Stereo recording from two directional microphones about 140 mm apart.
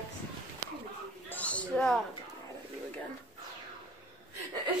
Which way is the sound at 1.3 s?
10° left (ahead or behind).